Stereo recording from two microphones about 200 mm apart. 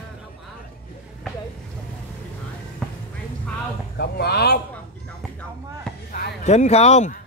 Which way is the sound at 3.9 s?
50° left (ahead or behind).